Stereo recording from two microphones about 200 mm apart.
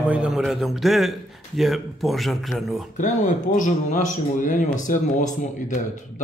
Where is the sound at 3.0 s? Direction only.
40° left (ahead or behind).